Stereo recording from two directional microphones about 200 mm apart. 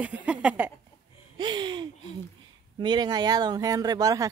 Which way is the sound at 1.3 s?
20° right (ahead or behind).